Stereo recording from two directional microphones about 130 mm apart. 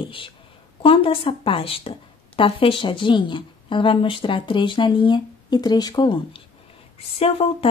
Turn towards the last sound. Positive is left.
turn(degrees=50)  # may be behind; listen again after turning